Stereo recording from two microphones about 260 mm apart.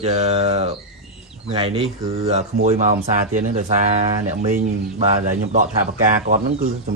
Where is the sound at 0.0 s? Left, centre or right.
Right.